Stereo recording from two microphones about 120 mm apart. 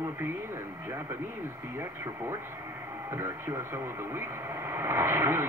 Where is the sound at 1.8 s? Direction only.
20° right (ahead or behind).